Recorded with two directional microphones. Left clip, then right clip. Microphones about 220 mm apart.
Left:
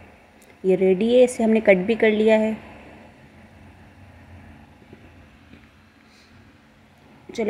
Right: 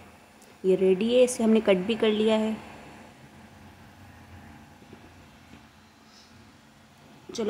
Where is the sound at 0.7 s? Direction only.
5° left (ahead or behind).